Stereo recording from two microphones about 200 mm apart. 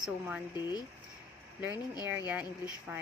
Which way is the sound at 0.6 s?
20° left (ahead or behind).